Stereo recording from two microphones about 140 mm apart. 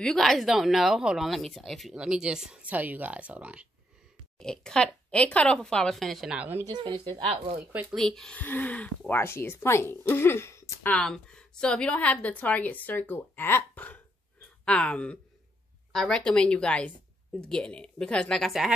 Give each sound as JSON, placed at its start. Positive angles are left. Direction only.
{"t": 0.0, "sound": "speech", "side_deg": 5}
{"t": 4.4, "sound": "speech", "side_deg": 5}
{"t": 6.6, "sound": "speech", "side_deg": -30}
{"t": 7.9, "sound": "speech", "side_deg": 0}